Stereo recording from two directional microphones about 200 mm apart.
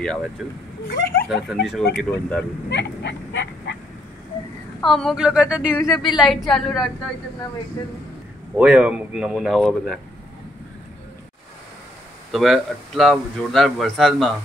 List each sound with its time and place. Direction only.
0.0 s a man's voice: 5° left (ahead or behind)
0.8 s speech: 50° left (ahead or behind)
1.5 s a man's voice: centre (ahead or behind)
2.7 s a sound: 60° left (ahead or behind)
4.8 s a man's voice: centre (ahead or behind)
8.5 s a man's voice: 5° right (ahead or behind)
12.3 s a man's voice: centre (ahead or behind)